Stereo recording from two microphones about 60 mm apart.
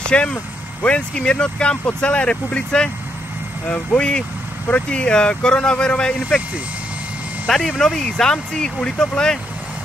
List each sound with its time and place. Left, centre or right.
0.0 s speech: centre
7.4 s speech: centre